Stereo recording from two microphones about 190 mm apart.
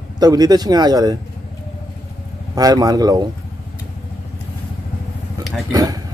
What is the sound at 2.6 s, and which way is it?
Speech, 20° right (ahead or behind).